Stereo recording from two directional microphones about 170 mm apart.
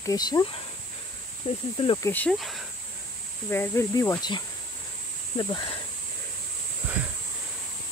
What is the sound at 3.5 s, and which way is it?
Speech, 15° left (ahead or behind).